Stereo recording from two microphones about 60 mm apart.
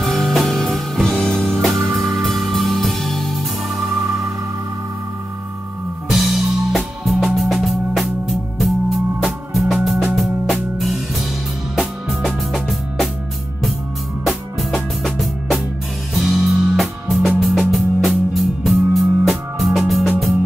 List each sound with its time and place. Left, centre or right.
0.0 s music: centre
1.1 s music: centre
1.4 s music: centre
6.0 s music: centre
15.0 s music: centre